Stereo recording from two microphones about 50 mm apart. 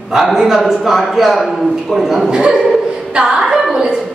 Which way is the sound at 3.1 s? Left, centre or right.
Centre.